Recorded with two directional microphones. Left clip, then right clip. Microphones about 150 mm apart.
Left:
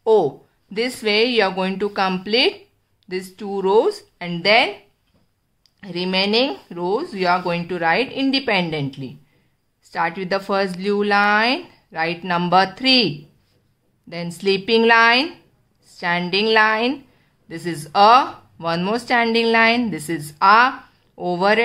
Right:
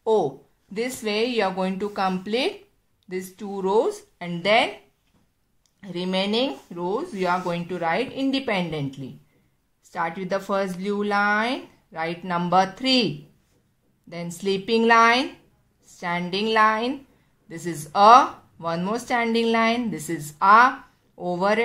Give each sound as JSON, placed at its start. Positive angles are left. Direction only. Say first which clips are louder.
{"t": 0.0, "sound": "a sound", "louder": "left 5 dB", "side_deg": 15}
{"t": 1.0, "sound": "speech", "louder": "left 7 dB", "side_deg": 15}
{"t": 5.8, "sound": "speech", "louder": "left 5 dB", "side_deg": 15}